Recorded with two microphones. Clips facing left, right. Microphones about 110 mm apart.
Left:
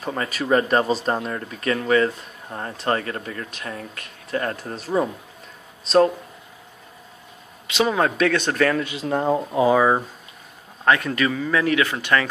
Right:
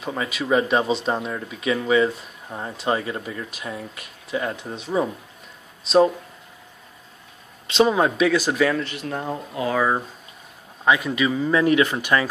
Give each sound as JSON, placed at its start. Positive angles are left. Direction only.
{"t": 0.0, "sound": "speech", "side_deg": 0}
{"t": 4.3, "sound": "speech", "side_deg": -5}
{"t": 7.6, "sound": "speech", "side_deg": -25}
{"t": 8.7, "sound": "speech", "side_deg": 10}
{"t": 9.1, "sound": "speech", "side_deg": 35}
{"t": 10.9, "sound": "speech", "side_deg": -5}
{"t": 11.3, "sound": "speech", "side_deg": -25}